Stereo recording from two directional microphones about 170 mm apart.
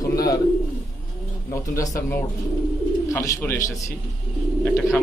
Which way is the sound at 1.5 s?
20° left (ahead or behind).